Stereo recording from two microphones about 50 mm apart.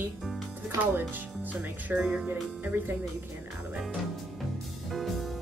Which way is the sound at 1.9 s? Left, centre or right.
Centre.